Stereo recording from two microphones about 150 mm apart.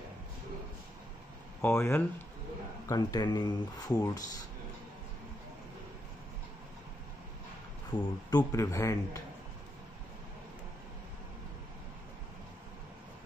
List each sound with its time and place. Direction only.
1.6 s speech: 20° left (ahead or behind)
7.9 s speech: 10° left (ahead or behind)
8.3 s speech: 25° left (ahead or behind)